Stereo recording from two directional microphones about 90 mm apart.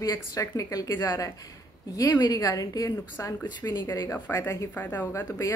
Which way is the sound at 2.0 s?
45° left (ahead or behind).